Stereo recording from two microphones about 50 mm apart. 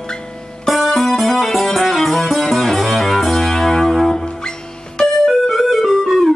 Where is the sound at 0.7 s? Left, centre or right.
Centre.